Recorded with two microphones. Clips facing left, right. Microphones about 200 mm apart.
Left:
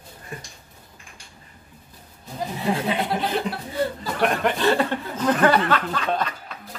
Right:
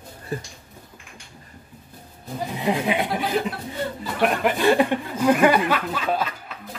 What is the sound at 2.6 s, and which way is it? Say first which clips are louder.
Speech: right 1 dB; 15° right (ahead or behind).